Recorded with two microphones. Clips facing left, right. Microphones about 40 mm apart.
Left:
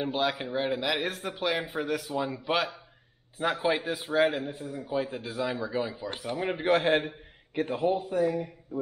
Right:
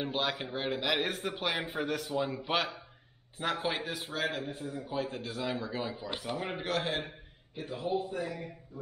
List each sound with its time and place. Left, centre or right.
0.0 s a man's voice: centre
6.7 s a man's voice: left